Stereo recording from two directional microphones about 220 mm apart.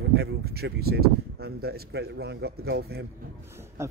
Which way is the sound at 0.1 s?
45° right (ahead or behind).